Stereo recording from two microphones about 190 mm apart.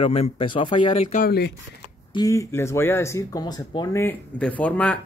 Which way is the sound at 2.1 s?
20° left (ahead or behind).